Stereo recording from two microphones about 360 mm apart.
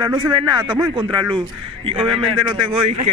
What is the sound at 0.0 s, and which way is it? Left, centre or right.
A man's voice, centre.